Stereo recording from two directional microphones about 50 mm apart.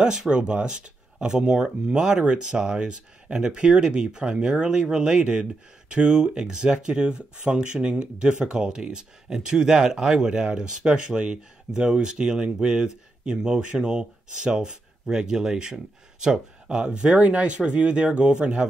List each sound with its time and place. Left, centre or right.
0.0 s speech: centre